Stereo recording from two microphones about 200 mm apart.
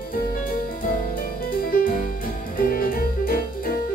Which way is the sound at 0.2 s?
45° left (ahead or behind).